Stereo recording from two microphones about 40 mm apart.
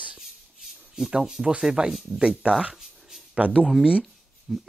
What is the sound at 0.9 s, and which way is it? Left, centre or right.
Speech, centre.